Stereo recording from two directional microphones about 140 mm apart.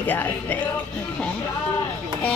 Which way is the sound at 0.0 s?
15° left (ahead or behind).